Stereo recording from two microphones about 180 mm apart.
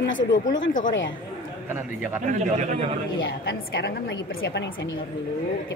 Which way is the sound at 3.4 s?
70° left (ahead or behind).